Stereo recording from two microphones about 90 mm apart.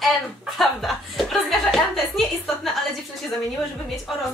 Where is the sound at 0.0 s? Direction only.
Centre (ahead or behind).